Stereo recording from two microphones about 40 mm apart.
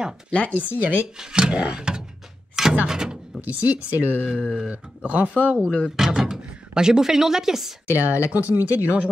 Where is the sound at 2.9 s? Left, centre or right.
Centre.